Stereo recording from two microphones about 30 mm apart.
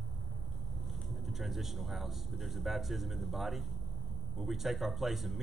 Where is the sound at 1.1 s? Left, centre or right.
Centre.